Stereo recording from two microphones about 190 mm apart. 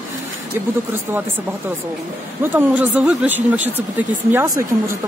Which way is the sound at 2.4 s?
10° right (ahead or behind).